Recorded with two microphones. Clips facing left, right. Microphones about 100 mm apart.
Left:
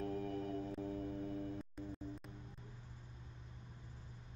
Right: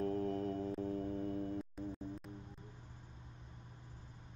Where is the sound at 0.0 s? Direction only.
30° right (ahead or behind).